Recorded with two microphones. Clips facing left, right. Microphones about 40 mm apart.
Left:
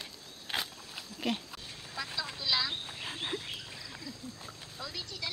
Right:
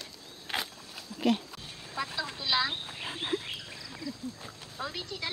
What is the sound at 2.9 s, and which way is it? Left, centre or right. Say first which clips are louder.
Frog: right 4 dB; centre.